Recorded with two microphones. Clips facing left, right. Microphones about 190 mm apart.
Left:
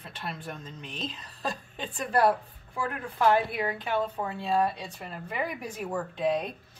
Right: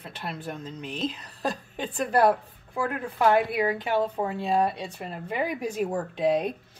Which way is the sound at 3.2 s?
15° right (ahead or behind).